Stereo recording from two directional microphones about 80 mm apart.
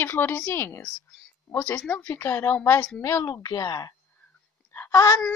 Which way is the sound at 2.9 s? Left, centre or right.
Left.